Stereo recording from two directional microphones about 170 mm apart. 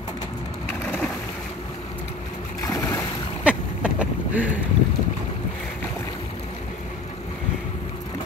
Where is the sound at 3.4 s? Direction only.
5° right (ahead or behind).